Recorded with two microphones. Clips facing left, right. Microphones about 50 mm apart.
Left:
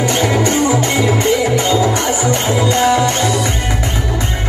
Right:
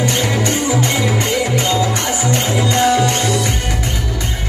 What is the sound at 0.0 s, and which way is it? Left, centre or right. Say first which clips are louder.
Music: left 3 dB; centre.